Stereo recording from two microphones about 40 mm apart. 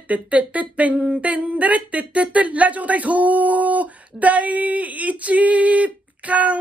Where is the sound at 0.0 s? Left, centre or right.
Right.